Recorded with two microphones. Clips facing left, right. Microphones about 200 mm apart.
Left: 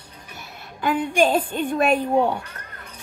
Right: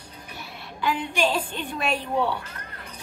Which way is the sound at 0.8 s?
50° left (ahead or behind).